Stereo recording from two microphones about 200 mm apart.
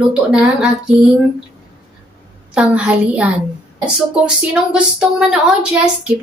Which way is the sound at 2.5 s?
5° right (ahead or behind).